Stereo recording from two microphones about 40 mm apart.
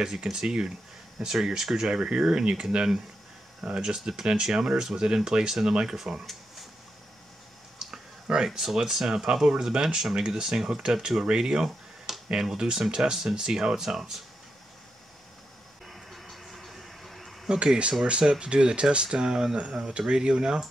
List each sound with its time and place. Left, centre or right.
0.2 s speech: centre
1.9 s speech: right
3.6 s speech: centre
7.8 s a sound: centre
8.5 s speech: centre
12.1 s tick-tock: centre
12.5 s speech: centre
15.9 s vehicle: centre
17.5 s speech: centre